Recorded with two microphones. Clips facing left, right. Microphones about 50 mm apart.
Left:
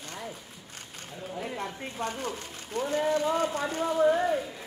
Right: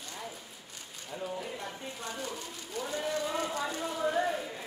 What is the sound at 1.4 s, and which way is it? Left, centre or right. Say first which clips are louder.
Speech: left 4 dB; left.